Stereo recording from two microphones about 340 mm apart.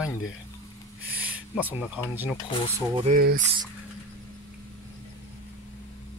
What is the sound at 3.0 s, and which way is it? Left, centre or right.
Speech, right.